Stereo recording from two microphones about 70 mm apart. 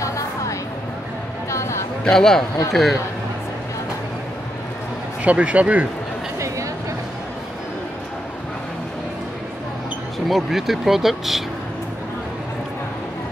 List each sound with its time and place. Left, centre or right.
1.5 s a sound: left
2.0 s a man's voice: centre
5.2 s speech: centre
10.2 s speech: centre